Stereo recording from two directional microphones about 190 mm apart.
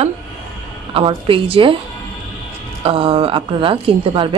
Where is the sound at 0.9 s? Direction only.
25° right (ahead or behind).